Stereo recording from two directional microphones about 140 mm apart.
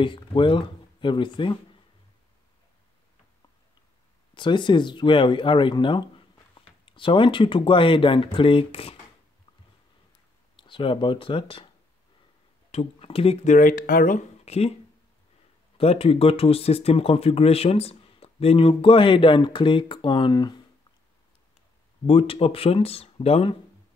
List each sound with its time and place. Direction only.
0.0 s speech: 35° left (ahead or behind)
4.4 s speech: 35° left (ahead or behind)
10.5 s speech: 35° left (ahead or behind)
12.7 s speech: 45° left (ahead or behind); by 14.2 s 85° left
14.4 s a sound: 50° left (ahead or behind)
15.8 s speech: 45° left (ahead or behind)
22.0 s speech: 40° left (ahead or behind)